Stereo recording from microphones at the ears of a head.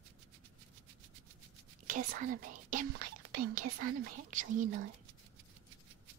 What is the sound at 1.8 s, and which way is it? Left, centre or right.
Speech, right.